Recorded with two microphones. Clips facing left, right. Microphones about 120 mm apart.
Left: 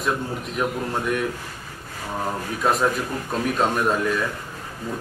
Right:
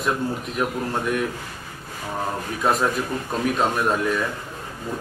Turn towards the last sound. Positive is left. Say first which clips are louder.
# even
turn(degrees=0)  # may be behind; listen again after turning